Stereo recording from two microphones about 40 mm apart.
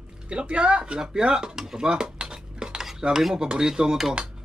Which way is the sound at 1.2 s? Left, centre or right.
Right.